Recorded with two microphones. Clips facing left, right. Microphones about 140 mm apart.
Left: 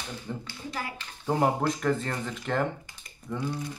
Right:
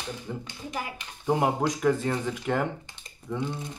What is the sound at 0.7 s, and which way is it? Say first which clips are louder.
Speech: right 2 dB; 15° right (ahead or behind).